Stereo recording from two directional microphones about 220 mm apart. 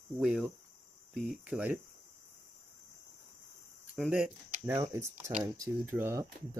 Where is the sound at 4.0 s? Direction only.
5° right (ahead or behind).